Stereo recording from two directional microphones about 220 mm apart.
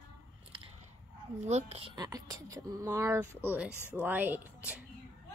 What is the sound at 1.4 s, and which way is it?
Speech, 30° right (ahead or behind).